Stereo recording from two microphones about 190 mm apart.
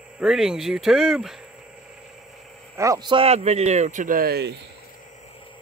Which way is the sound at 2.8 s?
20° right (ahead or behind).